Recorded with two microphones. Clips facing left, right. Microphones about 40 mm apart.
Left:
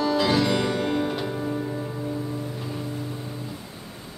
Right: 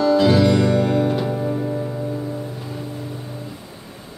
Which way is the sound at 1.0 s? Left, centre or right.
Centre.